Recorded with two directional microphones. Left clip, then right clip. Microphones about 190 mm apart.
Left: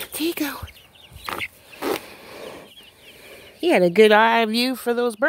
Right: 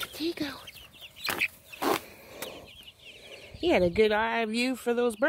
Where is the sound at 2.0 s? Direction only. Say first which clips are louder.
Left 5 dB; 45° left (ahead or behind).